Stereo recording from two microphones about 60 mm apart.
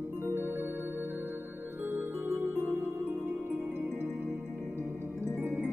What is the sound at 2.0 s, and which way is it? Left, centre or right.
Music, right.